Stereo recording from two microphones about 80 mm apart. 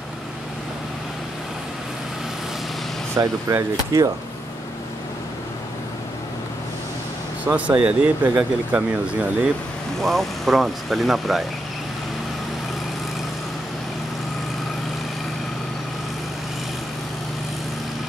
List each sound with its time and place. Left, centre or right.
3.2 s speech: right
7.4 s speech: centre
10.0 s speech: centre